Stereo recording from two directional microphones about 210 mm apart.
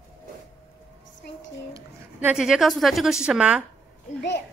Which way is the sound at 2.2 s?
5° right (ahead or behind).